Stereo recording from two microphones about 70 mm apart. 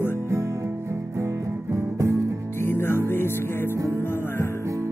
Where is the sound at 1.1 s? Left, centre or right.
Right.